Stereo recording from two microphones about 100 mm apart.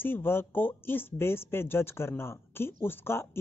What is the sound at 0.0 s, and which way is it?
Speech, 20° left (ahead or behind).